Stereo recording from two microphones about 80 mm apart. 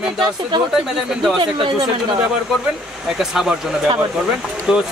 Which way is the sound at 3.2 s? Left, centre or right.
Centre.